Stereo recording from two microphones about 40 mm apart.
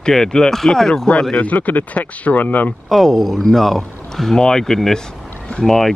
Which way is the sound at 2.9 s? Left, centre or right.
Centre.